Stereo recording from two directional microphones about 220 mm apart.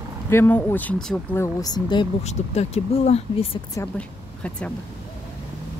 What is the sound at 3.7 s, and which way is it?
Speech, 5° left (ahead or behind).